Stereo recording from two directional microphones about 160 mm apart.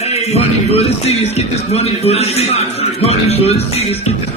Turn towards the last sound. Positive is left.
turn(degrees=40)  # may be behind; listen again after turning